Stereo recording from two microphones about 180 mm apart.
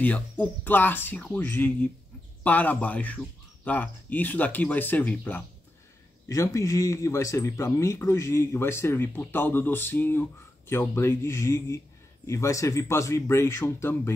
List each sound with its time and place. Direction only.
0.0 s speech: 10° left (ahead or behind)